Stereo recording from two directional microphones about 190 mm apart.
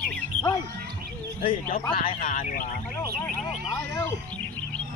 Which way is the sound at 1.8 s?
25° left (ahead or behind).